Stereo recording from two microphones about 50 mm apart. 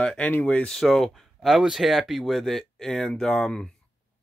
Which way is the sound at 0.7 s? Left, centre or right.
Centre.